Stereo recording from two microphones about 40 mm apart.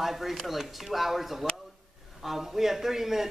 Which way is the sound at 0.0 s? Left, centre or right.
Centre.